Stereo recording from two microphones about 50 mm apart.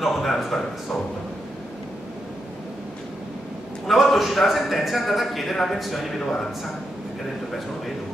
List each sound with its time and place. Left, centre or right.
0.0 s a man's voice: centre
3.8 s a man's voice: centre